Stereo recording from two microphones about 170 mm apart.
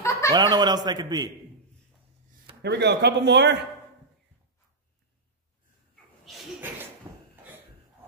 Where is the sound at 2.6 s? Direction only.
80° right.